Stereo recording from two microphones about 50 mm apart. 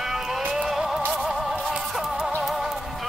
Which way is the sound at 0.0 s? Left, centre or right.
Centre.